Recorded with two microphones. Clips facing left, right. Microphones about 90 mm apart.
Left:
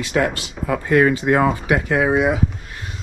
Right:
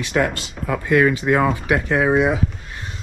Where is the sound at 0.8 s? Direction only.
40° left (ahead or behind).